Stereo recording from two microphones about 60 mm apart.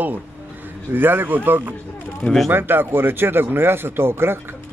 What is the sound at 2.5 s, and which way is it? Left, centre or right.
Speech, right.